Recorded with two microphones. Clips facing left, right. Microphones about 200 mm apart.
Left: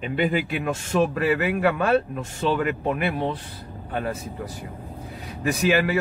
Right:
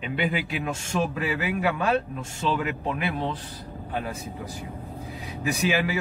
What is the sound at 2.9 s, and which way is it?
Speech, 50° left (ahead or behind).